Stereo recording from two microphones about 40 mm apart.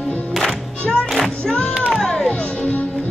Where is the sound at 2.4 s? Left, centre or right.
Left.